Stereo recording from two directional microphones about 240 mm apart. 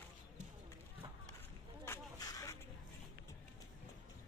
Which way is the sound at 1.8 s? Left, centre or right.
Centre.